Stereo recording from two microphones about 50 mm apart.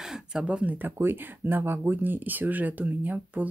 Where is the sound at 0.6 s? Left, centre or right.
Right.